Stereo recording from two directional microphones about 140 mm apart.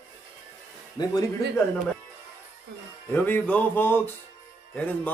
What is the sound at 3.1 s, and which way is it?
Music, 15° left (ahead or behind).